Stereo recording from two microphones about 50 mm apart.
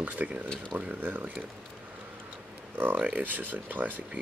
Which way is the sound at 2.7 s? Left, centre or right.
Right.